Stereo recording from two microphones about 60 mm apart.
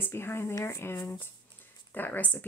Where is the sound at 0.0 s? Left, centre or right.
Left.